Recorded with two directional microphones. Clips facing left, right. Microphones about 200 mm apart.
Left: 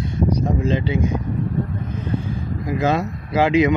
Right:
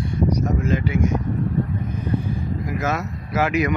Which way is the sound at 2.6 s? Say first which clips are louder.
Left 7 dB; 30° left (ahead or behind).